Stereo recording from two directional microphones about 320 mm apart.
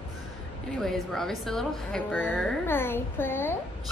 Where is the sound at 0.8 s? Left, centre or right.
Centre.